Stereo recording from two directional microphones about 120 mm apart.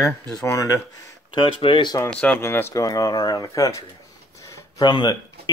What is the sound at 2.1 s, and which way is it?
Speech, 10° left (ahead or behind).